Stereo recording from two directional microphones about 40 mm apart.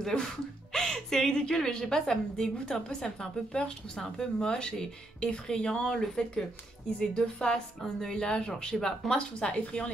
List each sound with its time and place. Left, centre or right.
0.0 s speech: centre
0.7 s music: centre
1.4 s speech: centre
8.7 s speech: centre
9.1 s speech: left